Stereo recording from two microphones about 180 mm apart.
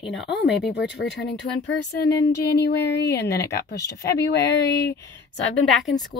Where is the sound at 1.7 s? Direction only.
65° left (ahead or behind).